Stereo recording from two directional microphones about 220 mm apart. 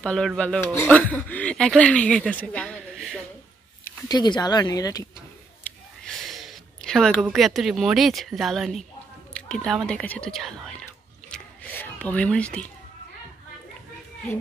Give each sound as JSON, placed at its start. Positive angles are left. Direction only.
{"t": 0.0, "sound": "speech", "side_deg": 5}
{"t": 3.8, "sound": "speech", "side_deg": 20}
{"t": 5.6, "sound": "a sound", "side_deg": 0}
{"t": 9.3, "sound": "whispering", "side_deg": 5}